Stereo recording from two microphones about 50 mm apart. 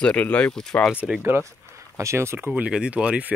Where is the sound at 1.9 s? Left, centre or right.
Right.